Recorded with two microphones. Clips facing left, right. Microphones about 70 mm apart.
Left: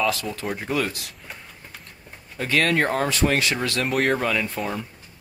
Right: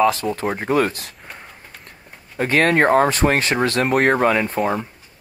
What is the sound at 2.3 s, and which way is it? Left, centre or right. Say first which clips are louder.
Speech: right 5 dB; right.